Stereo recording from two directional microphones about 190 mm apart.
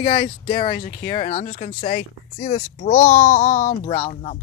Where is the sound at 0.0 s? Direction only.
30° left (ahead or behind).